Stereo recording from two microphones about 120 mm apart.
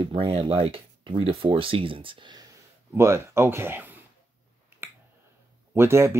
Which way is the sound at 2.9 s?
20° right (ahead or behind).